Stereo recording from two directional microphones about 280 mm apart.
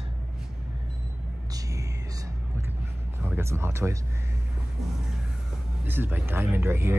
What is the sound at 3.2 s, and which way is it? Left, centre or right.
Speech, centre.